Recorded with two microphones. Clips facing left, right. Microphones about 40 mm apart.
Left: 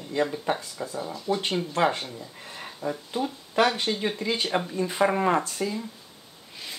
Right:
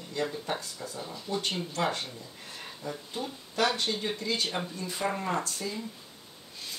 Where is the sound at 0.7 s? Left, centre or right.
Left.